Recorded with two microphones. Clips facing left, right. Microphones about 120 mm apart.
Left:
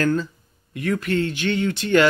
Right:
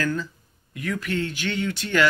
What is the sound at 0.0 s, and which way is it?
Speech, 30° left (ahead or behind).